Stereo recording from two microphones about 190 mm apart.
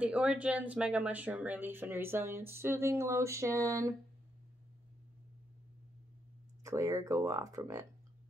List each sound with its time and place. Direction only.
0.0 s speech: 5° right (ahead or behind)
6.6 s speech: 15° right (ahead or behind)